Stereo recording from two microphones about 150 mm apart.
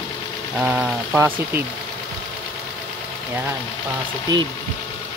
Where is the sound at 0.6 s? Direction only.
5° right (ahead or behind).